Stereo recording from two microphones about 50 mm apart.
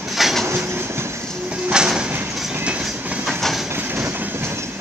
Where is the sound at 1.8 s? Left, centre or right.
Centre.